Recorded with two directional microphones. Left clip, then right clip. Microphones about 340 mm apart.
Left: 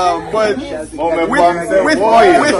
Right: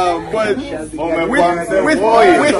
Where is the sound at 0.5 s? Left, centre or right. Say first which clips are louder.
Left 1 dB; left.